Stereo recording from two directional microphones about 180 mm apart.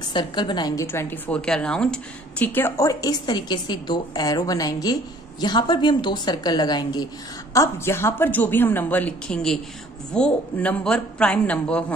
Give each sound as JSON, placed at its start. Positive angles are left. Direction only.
{"t": 0.1, "sound": "a woman's voice", "side_deg": 25}